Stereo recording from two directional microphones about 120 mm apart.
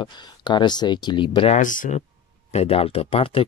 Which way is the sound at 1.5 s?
90° left.